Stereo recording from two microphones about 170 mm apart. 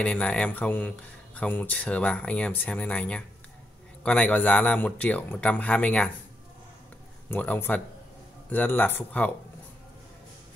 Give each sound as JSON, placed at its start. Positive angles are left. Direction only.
{"t": 0.0, "sound": "speech", "side_deg": 5}
{"t": 7.2, "sound": "speech", "side_deg": 10}